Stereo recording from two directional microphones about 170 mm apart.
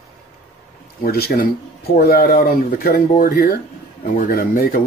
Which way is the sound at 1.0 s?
65° left (ahead or behind).